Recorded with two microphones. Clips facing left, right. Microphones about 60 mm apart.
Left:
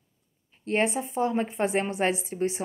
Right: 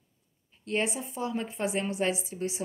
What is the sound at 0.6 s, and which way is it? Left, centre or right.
Speech, left.